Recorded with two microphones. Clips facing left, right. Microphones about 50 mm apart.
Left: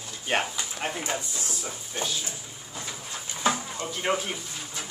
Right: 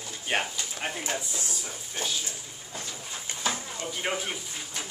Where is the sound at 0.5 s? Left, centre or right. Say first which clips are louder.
Left 2 dB; centre.